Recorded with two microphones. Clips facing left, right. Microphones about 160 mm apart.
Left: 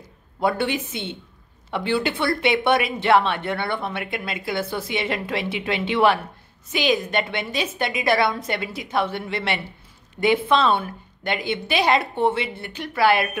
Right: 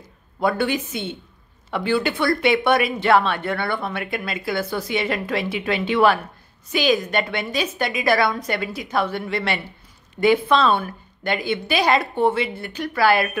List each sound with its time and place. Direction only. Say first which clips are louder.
0.4 s speech: right 1 dB; 25° left (ahead or behind)